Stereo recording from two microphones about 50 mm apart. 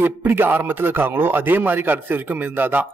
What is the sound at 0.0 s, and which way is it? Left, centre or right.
A man's voice, right.